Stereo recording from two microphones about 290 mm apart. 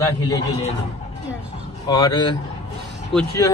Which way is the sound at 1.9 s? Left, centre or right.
Centre.